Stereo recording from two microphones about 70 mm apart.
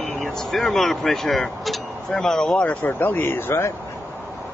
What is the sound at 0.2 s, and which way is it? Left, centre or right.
Speech, centre.